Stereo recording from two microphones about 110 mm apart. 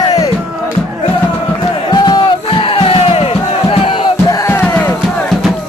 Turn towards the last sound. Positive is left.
turn(degrees=20)  # may be behind; listen again after turning